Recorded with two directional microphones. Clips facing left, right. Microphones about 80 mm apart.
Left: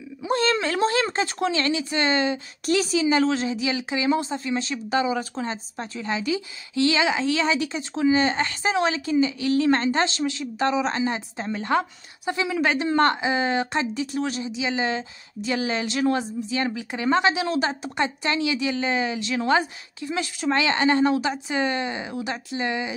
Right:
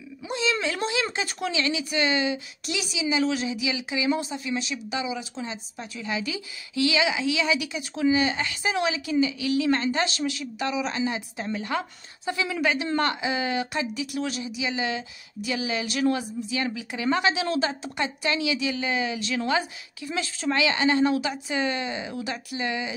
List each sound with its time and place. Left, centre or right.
0.3 s a sound: left
1.1 s speech: left
1.5 s speech: left
3.3 s speech: left
5.9 s speech: left
12.3 s speech: left
20.5 s speech: left